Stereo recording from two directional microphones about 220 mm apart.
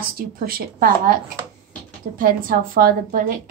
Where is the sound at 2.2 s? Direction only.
40° right (ahead or behind).